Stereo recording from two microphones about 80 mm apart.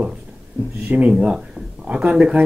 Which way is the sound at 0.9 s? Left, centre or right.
Centre.